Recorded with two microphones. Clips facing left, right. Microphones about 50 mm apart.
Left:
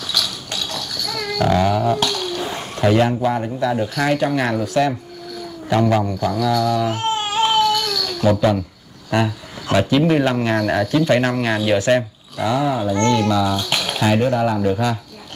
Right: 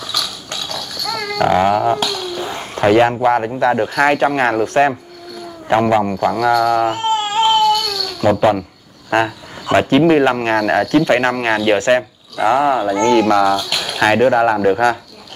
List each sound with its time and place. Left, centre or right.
0.5 s a sound: right
2.7 s speech: right
7.2 s baby cry: centre
8.2 s speech: right